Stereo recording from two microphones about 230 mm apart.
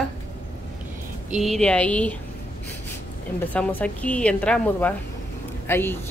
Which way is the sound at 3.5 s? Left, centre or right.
Centre.